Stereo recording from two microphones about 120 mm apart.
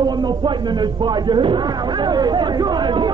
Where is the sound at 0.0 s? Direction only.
35° right (ahead or behind).